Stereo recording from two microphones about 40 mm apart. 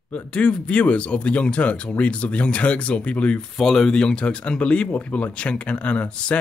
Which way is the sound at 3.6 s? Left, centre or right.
Centre.